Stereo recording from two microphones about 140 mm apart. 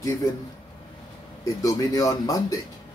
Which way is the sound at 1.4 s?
25° left (ahead or behind).